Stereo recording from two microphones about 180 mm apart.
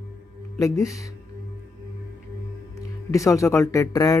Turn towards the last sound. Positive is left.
turn(degrees=20)  # may be behind; listen again after turning